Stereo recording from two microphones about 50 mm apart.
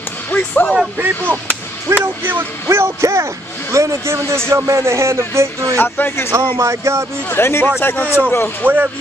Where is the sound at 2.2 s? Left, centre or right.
Right.